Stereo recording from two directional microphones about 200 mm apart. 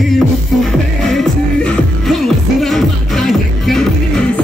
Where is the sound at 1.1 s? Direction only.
Centre (ahead or behind).